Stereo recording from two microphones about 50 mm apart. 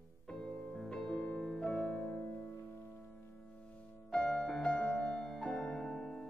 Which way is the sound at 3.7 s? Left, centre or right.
Centre.